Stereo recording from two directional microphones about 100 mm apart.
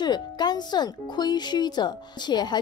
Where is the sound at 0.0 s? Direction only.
45° left (ahead or behind).